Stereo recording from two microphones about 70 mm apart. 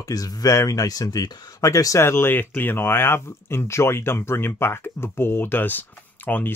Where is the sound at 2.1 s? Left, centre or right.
Left.